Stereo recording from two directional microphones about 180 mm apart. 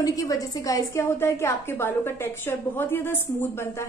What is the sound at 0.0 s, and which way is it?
A woman's voice, 20° left (ahead or behind).